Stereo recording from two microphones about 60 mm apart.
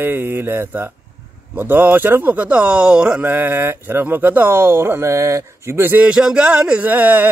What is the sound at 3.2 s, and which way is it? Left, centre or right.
Speech, right.